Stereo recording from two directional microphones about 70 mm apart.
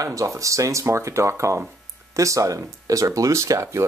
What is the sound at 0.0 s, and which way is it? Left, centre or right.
Speech, right.